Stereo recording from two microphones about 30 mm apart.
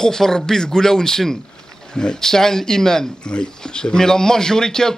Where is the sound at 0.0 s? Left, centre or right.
Centre.